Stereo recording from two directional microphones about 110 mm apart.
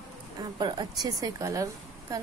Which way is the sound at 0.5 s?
40° right (ahead or behind).